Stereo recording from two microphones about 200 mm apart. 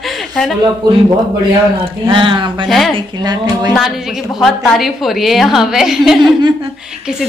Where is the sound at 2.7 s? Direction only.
Centre (ahead or behind).